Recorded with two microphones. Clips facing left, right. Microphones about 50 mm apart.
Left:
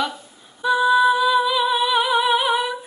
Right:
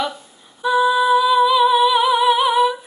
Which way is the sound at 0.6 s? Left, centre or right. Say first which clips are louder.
Even; centre.